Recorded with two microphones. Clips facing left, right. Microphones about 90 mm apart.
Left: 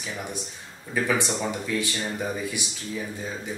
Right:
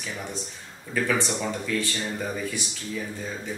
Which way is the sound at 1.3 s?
5° left (ahead or behind).